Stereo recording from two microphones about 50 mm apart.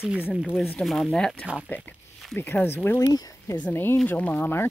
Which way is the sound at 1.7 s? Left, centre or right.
Left.